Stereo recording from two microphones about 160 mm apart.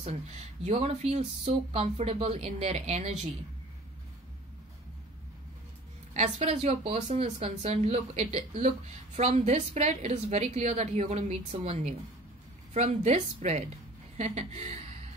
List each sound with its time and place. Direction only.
0.0 s speech: 45° right (ahead or behind)
6.1 s speech: 45° right (ahead or behind)